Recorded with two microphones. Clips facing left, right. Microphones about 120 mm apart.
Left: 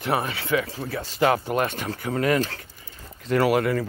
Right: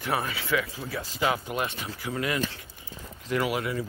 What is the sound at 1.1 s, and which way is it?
Speech, 50° left (ahead or behind).